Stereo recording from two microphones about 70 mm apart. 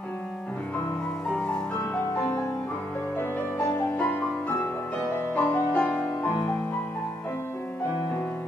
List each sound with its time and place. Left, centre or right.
4.0 s music: left
5.7 s music: centre